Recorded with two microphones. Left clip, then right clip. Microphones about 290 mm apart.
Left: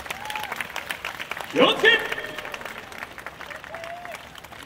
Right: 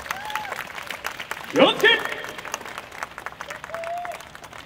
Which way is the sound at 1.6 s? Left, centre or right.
Right.